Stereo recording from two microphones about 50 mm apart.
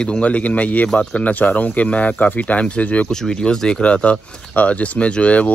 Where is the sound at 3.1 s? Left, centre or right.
Centre.